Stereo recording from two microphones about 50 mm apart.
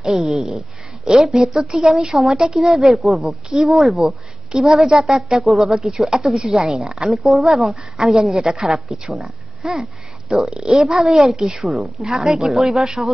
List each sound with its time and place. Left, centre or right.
0.0 s speech: centre
10.5 s speech: centre